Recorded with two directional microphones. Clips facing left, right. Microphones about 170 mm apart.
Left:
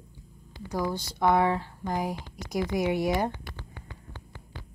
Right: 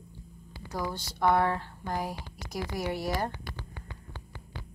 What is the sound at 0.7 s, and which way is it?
Speech, 15° left (ahead or behind).